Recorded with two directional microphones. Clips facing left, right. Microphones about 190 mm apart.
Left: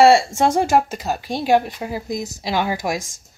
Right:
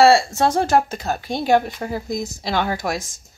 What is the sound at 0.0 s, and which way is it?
Speech, 20° left (ahead or behind).